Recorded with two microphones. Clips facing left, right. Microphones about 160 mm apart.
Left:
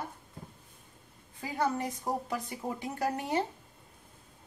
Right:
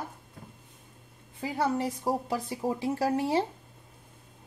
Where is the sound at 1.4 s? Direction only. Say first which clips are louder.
Right 3 dB; 30° right (ahead or behind).